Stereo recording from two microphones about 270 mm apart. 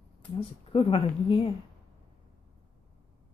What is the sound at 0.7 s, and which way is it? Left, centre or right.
Speech, left.